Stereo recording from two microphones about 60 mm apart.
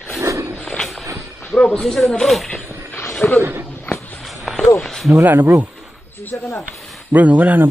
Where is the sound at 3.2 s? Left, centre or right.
Left.